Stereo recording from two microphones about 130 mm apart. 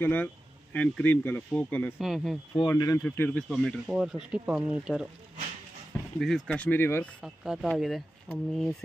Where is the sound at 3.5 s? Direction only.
Centre (ahead or behind).